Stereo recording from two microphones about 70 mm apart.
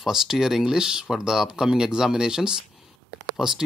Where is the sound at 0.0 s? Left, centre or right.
Centre.